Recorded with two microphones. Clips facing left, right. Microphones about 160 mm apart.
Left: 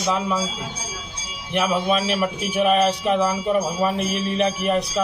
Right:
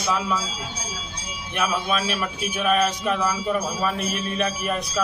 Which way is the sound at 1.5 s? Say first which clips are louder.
Left 4 dB; 25° left (ahead or behind).